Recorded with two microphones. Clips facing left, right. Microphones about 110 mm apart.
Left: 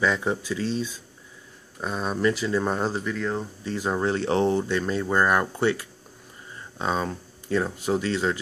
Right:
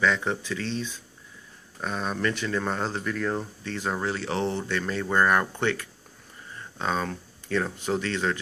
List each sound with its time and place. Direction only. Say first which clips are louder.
0.0 s speech: left 1 dB; 10° left (ahead or behind)
3.2 s speech: even; 5° right (ahead or behind)
3.6 s speech: left 5 dB; 15° left (ahead or behind)